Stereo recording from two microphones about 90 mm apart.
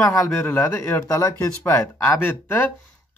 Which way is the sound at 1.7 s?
20° left (ahead or behind).